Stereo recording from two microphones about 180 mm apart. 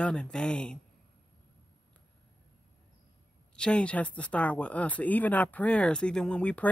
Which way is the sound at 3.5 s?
5° left (ahead or behind).